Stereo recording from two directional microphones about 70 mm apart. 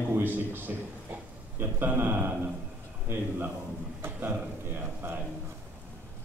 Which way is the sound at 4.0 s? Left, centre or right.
Right.